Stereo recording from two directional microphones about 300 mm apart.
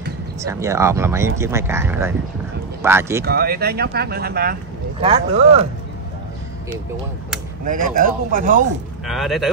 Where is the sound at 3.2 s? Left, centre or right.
Right.